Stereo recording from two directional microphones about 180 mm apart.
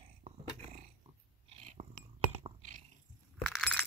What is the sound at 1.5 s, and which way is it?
Dog, 35° right (ahead or behind).